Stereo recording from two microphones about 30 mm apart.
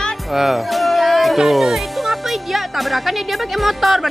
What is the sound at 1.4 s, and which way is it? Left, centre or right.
Speech, centre.